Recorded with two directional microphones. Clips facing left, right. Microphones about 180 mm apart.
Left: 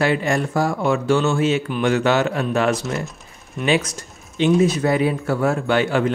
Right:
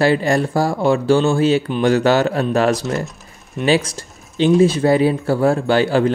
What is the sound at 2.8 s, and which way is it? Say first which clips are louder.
Speech: right 3 dB; centre (ahead or behind).